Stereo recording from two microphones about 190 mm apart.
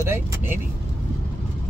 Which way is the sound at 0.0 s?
10° right (ahead or behind).